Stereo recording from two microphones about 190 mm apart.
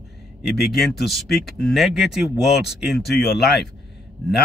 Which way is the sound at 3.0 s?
60° left (ahead or behind).